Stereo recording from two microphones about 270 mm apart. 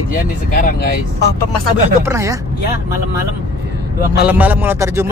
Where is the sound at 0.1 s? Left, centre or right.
Left.